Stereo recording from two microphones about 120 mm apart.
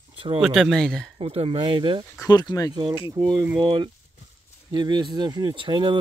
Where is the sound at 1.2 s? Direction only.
50° right (ahead or behind).